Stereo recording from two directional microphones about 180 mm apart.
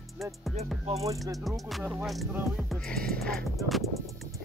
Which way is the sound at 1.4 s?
Centre (ahead or behind).